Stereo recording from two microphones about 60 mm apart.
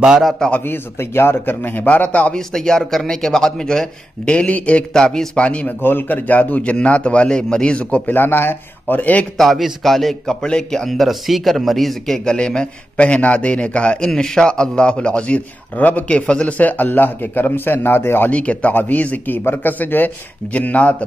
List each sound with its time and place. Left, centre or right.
0.2 s a man's voice: centre
0.7 s a man's voice: left
2.3 s a man's voice: centre
4.9 s a man's voice: centre
5.8 s a man's voice: left
9.4 s a man's voice: centre
12.3 s a man's voice: centre; by 18.3 s left
18.3 s a man's voice: left